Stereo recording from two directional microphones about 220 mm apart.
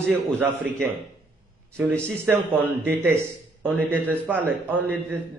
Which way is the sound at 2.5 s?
10° right (ahead or behind).